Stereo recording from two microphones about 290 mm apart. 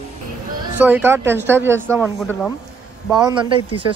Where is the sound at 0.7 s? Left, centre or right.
Centre.